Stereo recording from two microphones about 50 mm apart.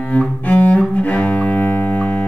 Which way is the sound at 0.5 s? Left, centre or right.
Left.